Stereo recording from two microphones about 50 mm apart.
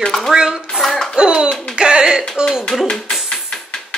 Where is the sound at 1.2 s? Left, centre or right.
Centre.